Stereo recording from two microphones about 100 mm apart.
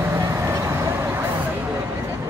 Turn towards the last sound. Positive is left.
turn(degrees=-25)  # may be behind; listen again after turning